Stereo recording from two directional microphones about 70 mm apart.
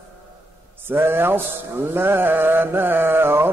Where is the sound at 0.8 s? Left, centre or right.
Right.